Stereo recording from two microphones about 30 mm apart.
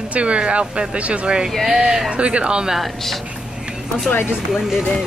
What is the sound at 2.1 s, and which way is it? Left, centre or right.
Speech, right.